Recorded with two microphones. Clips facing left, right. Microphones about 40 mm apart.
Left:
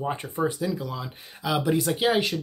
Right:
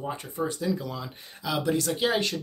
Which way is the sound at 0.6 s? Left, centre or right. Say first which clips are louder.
Even; centre.